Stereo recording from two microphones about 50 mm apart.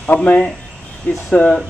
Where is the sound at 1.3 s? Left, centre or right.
Left.